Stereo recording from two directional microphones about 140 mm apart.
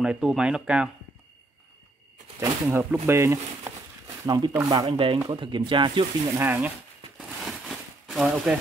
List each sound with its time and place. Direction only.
0.0 s speech: 5° right (ahead or behind)
2.4 s speech: 15° right (ahead or behind)
4.3 s speech: 30° right (ahead or behind)
6.3 s speech: 15° right (ahead or behind)
7.2 s a sound: 5° right (ahead or behind)